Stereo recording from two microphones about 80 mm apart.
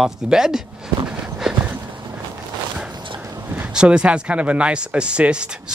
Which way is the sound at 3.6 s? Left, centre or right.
Centre.